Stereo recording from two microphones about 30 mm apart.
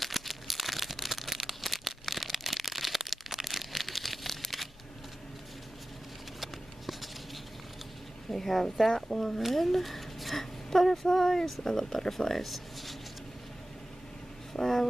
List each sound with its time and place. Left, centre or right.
0.0 s crumpling: centre
1.6 s a sound: centre
6.4 s a sound: centre
8.3 s a woman's voice: centre
9.1 s speech: centre
9.4 s speech: centre
14.5 s speech: centre